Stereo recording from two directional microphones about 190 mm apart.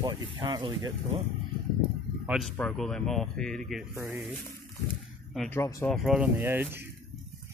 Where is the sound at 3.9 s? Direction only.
15° right (ahead or behind).